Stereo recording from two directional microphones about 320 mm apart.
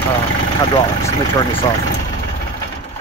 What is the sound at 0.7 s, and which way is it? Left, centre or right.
Speech, centre.